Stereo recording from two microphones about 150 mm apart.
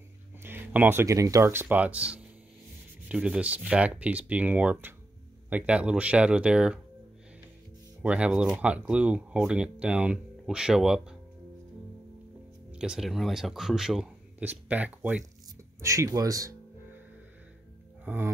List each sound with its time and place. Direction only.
0.4 s speech: 15° right (ahead or behind)
8.0 s speech: 10° right (ahead or behind)
12.7 s speech: 5° right (ahead or behind); by 16.5 s 20° right (ahead or behind)
18.0 s a sound: 15° right (ahead or behind)